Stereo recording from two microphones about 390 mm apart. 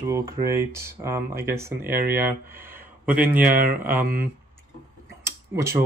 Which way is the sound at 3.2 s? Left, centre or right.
Right.